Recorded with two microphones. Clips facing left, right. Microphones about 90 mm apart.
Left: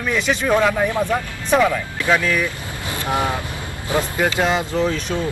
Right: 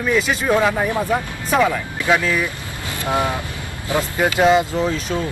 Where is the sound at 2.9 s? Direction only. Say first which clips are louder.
Right 1 dB; 20° right (ahead or behind).